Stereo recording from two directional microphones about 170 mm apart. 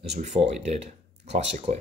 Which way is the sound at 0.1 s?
40° right (ahead or behind).